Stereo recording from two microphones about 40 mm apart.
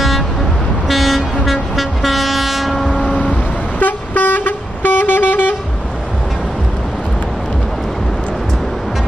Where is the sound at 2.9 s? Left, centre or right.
Right.